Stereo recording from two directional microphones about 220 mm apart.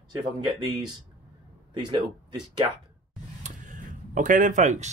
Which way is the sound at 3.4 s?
35° right (ahead or behind).